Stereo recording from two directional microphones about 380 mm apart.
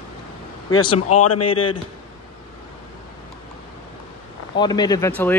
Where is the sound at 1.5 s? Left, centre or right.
Centre.